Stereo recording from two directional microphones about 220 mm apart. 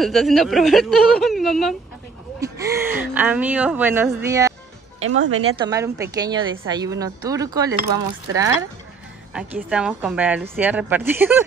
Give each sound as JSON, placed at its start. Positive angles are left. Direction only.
{"t": 0.0, "sound": "a woman's voice", "side_deg": 0}
{"t": 2.4, "sound": "speech", "side_deg": -15}
{"t": 5.0, "sound": "speech", "side_deg": -70}
{"t": 5.6, "sound": "speech", "side_deg": -15}
{"t": 9.3, "sound": "a woman's voice", "side_deg": -5}